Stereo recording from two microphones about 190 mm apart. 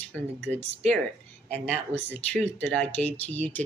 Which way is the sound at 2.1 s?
5° left (ahead or behind).